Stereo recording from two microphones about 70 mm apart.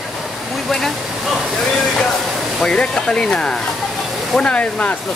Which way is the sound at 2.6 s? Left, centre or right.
Centre.